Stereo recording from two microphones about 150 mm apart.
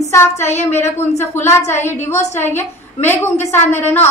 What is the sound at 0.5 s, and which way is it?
A woman's voice, 15° left (ahead or behind).